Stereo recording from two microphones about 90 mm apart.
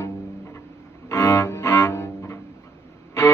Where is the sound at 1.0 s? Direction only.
35° left (ahead or behind).